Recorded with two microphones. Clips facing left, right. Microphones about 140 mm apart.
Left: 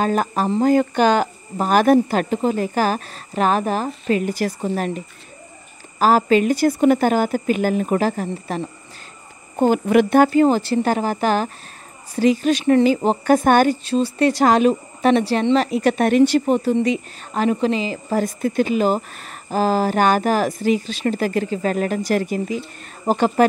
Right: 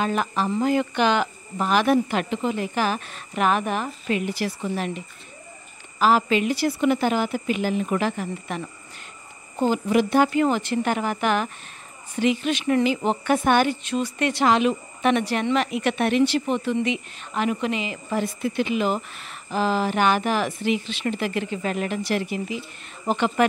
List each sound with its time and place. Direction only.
0.0 s a woman's voice: 40° left (ahead or behind)
9.6 s a woman's voice: 55° left (ahead or behind)
10.3 s speech: 35° left (ahead or behind)